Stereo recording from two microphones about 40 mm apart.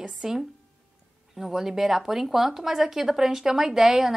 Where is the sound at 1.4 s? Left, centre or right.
Centre.